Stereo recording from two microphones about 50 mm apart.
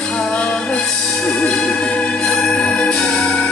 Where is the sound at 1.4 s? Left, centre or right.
Left.